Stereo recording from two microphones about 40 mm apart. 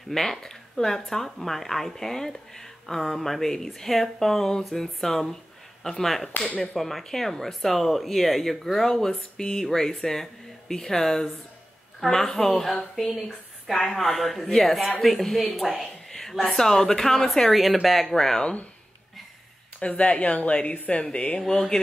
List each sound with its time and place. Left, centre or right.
0.1 s speech: centre
6.3 s speech: left
6.7 s speech: centre
16.1 s a sound: centre
16.5 s speech: centre
18.1 s speech: centre
19.8 s speech: left
21.0 s speech: left
21.4 s speech: centre